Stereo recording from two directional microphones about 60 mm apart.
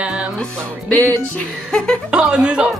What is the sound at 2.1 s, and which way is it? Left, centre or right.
Speech, centre.